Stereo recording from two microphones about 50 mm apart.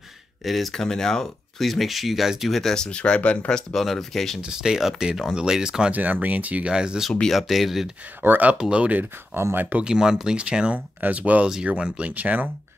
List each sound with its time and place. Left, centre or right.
0.5 s speech: centre
2.6 s speech: centre
3.7 s speech: centre
4.4 s speech: centre
5.9 s speech: right
6.7 s speech: centre
7.2 s speech: centre
8.2 s speech: right
8.5 s speech: centre
8.8 s speech: right
9.8 s speech: centre
11.0 s speech: right
11.4 s speech: centre
11.7 s speech: right